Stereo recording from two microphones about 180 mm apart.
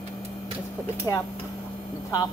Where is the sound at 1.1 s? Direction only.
20° left (ahead or behind).